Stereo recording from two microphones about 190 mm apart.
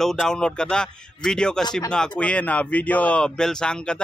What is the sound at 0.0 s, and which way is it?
Speech, centre (ahead or behind).